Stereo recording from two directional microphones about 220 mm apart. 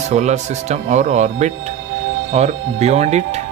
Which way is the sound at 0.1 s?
30° right (ahead or behind).